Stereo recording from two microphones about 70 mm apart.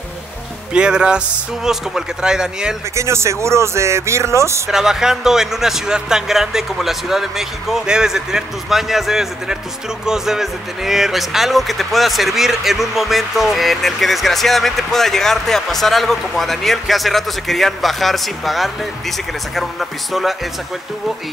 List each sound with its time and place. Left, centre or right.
0.7 s speech: centre
3.0 s speech: right
4.6 s speech: centre